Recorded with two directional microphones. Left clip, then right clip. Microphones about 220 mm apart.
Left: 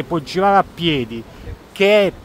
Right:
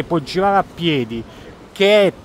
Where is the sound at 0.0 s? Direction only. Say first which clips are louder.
Even; 5° right (ahead or behind).